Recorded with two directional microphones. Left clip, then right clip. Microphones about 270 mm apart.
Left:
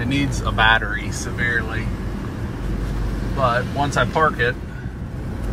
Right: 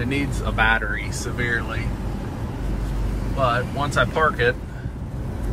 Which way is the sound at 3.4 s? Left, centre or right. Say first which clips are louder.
Left 2 dB; centre.